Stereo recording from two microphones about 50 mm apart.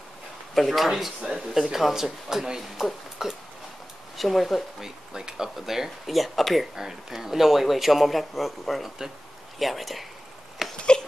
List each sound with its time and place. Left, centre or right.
0.6 s speech: centre
4.8 s speech: centre
10.6 s a sound: centre